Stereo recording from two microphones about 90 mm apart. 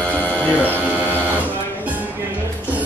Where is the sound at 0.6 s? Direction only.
20° right (ahead or behind).